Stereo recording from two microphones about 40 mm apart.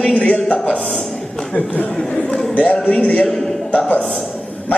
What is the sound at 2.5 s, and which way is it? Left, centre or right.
Speech, left.